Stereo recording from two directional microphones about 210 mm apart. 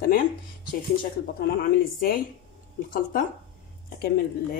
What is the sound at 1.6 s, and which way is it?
Speech, 45° left (ahead or behind).